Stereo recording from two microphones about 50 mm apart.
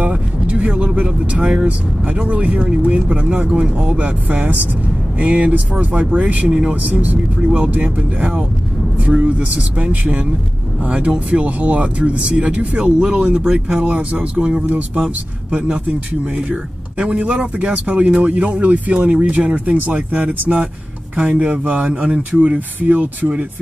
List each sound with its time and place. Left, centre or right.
0.0 s vehicle: right
0.9 s speech: right
6.7 s speech: right
7.3 s speech: centre
13.7 s speech: right
17.0 s speech: right